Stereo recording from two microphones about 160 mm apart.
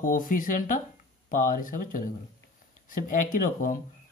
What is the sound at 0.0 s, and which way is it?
Speech, 55° left (ahead or behind).